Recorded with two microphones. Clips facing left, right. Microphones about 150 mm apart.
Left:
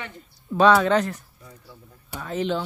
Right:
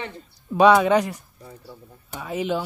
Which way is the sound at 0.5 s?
15° right (ahead or behind).